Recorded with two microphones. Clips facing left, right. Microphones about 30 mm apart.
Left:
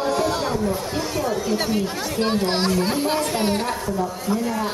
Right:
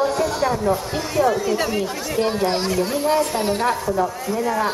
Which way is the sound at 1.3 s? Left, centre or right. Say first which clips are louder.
Right 2 dB; centre.